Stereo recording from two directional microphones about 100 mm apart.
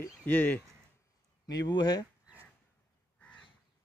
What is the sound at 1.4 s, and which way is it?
Speech, 40° left (ahead or behind).